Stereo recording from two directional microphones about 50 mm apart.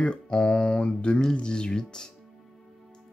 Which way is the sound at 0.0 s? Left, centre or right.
Centre.